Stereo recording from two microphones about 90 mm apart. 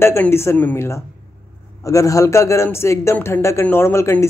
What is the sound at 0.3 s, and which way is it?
A man's voice, 30° left (ahead or behind).